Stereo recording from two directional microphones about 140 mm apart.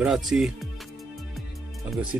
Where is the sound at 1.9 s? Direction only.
5° right (ahead or behind).